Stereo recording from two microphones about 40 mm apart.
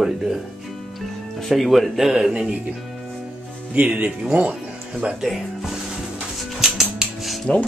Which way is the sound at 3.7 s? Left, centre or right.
Right.